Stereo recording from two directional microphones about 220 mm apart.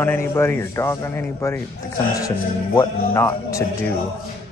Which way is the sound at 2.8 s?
15° left (ahead or behind).